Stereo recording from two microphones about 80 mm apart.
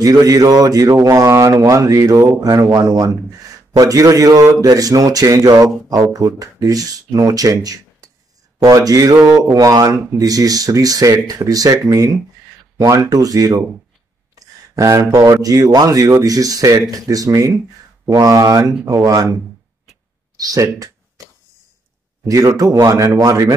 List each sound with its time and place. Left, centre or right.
0.0 s speech: right
0.9 s speech: right
20.3 s speech: right
22.2 s speech: right